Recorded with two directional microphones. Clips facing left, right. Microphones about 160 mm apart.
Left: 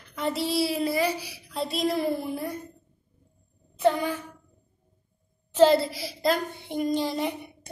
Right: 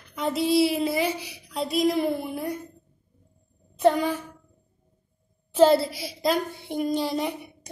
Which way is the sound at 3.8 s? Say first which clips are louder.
Right 3 dB; 20° right (ahead or behind).